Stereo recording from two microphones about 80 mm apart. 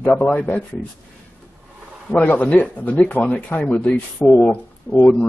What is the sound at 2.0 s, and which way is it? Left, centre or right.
A man's voice, left.